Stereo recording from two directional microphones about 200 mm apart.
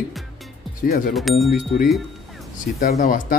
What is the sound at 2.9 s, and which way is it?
Speech, 40° left (ahead or behind).